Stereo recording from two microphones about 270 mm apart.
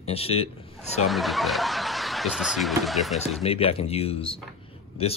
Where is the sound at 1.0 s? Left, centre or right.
Centre.